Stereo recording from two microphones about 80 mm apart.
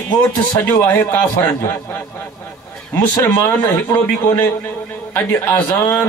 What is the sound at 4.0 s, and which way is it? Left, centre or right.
A man's voice, left.